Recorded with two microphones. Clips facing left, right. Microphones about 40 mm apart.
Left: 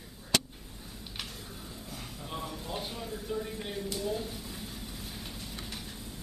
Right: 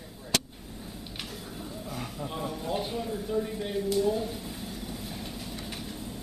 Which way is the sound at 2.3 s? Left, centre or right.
Centre.